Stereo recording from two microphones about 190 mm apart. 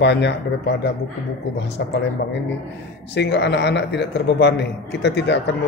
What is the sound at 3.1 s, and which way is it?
A man's voice, 65° left (ahead or behind).